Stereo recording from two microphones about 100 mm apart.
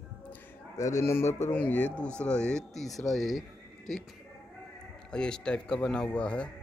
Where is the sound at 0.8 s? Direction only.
30° left (ahead or behind).